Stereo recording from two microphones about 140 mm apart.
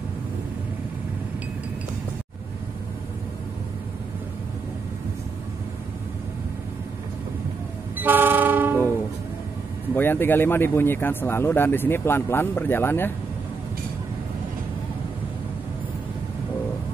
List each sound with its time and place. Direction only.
8.0 s train: 15° right (ahead or behind)
9.9 s speech: 15° left (ahead or behind)